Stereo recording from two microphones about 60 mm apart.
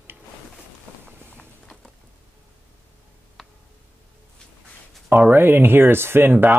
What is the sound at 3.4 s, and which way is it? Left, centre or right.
Tick, centre.